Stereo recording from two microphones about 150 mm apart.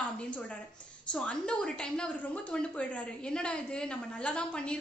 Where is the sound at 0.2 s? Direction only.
5° left (ahead or behind).